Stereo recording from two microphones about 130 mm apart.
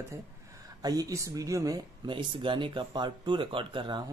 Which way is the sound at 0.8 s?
30° right (ahead or behind).